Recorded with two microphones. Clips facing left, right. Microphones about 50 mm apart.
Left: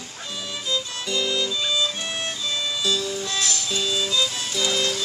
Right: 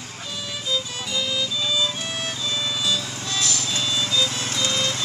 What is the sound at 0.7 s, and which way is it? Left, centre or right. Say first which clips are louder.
Music: left 1 dB; centre.